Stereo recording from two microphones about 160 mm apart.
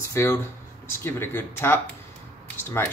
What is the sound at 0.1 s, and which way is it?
Speech, 20° left (ahead or behind).